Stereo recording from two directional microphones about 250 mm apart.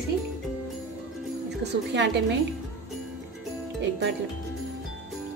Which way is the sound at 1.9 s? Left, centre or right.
Right.